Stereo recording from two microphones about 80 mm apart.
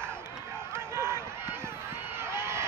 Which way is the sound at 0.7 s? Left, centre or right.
Right.